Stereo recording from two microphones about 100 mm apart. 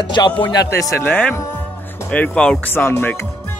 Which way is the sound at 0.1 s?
50° left (ahead or behind).